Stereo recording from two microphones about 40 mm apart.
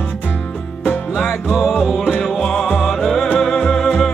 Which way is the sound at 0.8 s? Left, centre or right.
Left.